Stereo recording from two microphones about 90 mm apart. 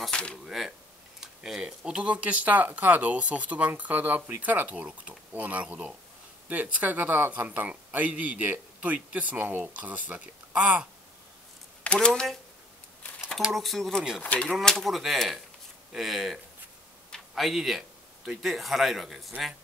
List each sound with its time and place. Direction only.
0.0 s a sound: 10° left (ahead or behind)
0.5 s speech: 5° right (ahead or behind)
11.8 s speech: 10° left (ahead or behind)
13.4 s speech: centre (ahead or behind)
14.2 s speech: 15° left (ahead or behind)
14.6 s speech: 5° left (ahead or behind)